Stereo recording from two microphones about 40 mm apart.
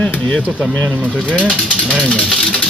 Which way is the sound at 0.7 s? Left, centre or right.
Left.